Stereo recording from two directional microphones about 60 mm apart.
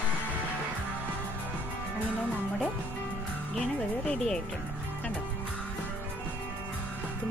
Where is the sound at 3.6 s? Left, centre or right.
Centre.